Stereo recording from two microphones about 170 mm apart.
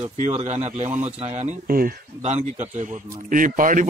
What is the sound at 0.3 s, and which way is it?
A man's voice, 40° right (ahead or behind).